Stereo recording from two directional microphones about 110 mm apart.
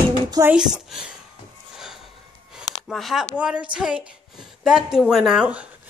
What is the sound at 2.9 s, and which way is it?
A woman's voice, centre (ahead or behind).